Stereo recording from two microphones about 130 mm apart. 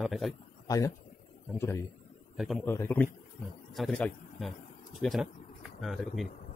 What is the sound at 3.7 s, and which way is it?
A man's voice, 5° left (ahead or behind).